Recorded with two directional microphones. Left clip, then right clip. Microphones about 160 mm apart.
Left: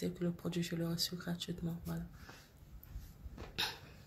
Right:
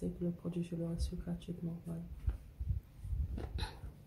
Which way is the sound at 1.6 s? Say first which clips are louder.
Left 1 dB; 35° left (ahead or behind).